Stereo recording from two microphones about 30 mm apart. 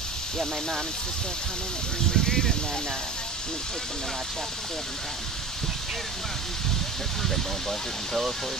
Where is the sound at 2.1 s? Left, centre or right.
Centre.